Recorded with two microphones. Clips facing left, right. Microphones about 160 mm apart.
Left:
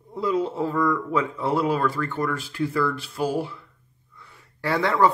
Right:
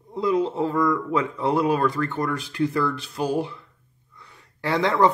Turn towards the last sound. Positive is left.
turn(degrees=-20)  # may be behind; listen again after turning